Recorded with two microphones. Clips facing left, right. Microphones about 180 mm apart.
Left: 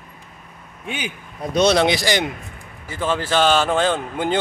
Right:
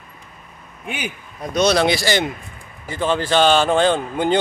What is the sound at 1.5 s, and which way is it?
Speech, 25° left (ahead or behind).